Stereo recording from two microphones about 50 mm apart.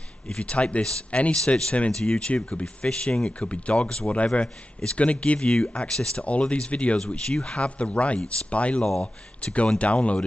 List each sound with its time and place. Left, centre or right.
0.3 s speech: left